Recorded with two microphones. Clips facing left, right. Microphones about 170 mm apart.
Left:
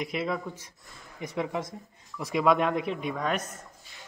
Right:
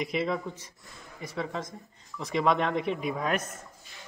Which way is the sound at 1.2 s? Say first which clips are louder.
Left 3 dB; 20° left (ahead or behind).